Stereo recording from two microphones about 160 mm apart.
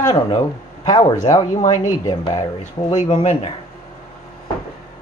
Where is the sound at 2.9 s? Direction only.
45° left (ahead or behind).